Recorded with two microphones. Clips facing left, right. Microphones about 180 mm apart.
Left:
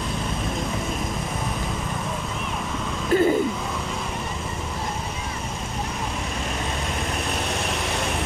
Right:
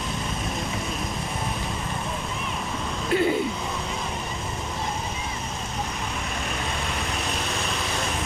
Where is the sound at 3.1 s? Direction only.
45° left (ahead or behind).